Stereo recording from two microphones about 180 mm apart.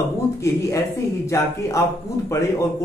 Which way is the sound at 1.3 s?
15° left (ahead or behind).